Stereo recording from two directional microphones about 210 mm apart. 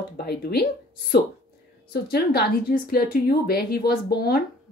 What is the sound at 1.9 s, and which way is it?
Speech, 50° left (ahead or behind).